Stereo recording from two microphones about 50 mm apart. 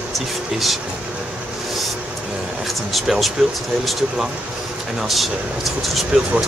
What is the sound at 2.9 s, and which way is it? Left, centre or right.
Speech, centre.